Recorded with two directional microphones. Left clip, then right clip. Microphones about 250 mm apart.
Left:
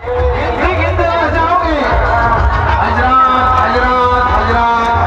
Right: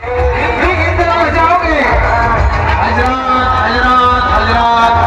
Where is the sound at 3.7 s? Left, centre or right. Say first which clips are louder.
Right 2 dB; right.